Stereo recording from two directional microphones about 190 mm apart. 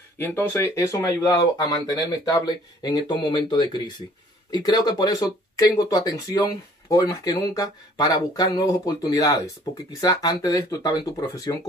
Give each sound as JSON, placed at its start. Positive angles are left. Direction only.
{"t": 0.2, "sound": "speech", "side_deg": 10}